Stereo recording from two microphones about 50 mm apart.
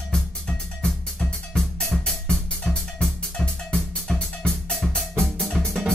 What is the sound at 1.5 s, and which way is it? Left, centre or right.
Music, centre.